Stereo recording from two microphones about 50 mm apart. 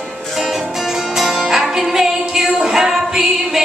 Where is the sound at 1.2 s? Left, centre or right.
Centre.